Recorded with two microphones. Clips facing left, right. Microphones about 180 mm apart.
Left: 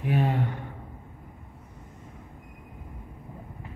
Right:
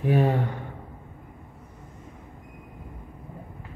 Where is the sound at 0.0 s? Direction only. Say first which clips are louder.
Right 4 dB; 35° right (ahead or behind).